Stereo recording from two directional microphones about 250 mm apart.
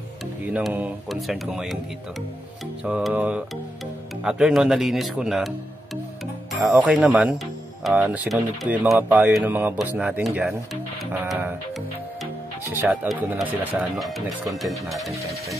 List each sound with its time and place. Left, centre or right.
0.5 s speech: centre
2.8 s speech: centre
6.5 s speech: centre
12.7 s speech: centre